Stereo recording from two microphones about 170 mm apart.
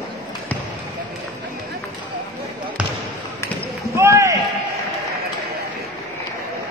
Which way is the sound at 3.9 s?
15° right (ahead or behind).